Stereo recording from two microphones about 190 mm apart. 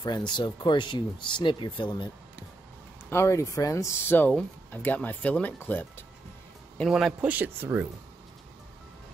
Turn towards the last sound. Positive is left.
turn(degrees=-10)  # may be behind; listen again after turning